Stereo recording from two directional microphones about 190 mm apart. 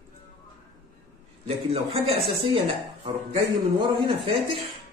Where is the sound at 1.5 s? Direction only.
30° right (ahead or behind).